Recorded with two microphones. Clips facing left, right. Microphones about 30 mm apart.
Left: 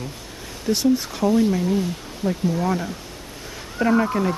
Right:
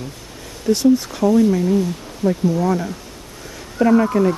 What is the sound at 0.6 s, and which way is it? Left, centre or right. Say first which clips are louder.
Speech: right 5 dB; centre.